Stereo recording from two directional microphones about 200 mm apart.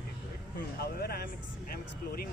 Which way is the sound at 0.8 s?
50° left (ahead or behind).